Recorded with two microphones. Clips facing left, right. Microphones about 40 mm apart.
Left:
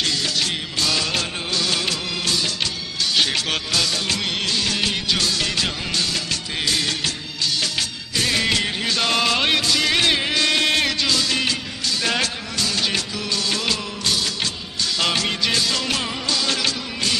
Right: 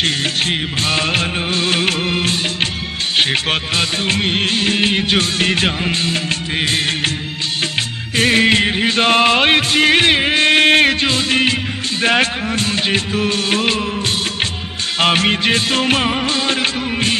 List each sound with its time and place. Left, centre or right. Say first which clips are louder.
0.0 s music: right 5 dB; right
3.2 s music of bollywood: right 6 dB; right
8.2 s music: right 8 dB; right
15.0 s music: right 8 dB; right